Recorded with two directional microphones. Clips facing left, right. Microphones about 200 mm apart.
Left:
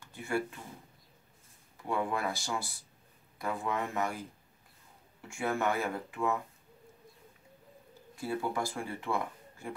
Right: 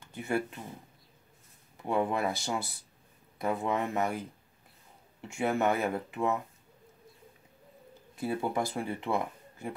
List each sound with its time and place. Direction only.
0.0 s speech: 20° right (ahead or behind)
1.9 s speech: 20° right (ahead or behind)
5.3 s speech: 20° right (ahead or behind)
8.2 s speech: 20° right (ahead or behind)